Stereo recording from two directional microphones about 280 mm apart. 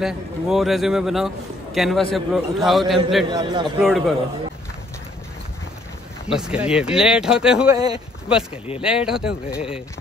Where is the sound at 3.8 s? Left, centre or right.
Centre.